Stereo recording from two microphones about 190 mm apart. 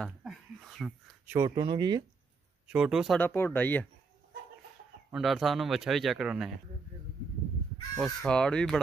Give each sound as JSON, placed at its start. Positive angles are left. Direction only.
{"t": 0.0, "sound": "a sound", "side_deg": 0}
{"t": 1.3, "sound": "speech", "side_deg": -20}
{"t": 2.7, "sound": "speech", "side_deg": -5}
{"t": 3.2, "sound": "speech", "side_deg": 10}
{"t": 5.1, "sound": "speech", "side_deg": 0}
{"t": 8.0, "sound": "speech", "side_deg": 5}